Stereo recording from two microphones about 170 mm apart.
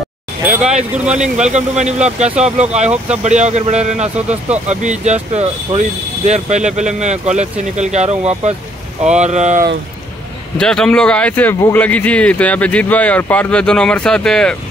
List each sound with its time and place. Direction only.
1.5 s speech: 40° right (ahead or behind)
10.6 s speech: 5° left (ahead or behind)